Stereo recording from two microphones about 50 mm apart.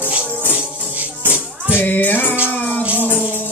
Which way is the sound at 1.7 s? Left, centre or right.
Left.